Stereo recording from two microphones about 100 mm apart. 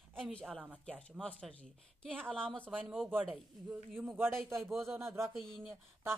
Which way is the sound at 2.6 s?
15° right (ahead or behind).